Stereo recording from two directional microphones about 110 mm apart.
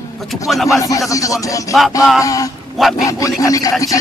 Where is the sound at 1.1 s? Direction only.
30° left (ahead or behind).